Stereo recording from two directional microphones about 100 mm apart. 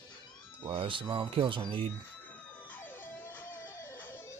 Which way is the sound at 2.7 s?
20° left (ahead or behind).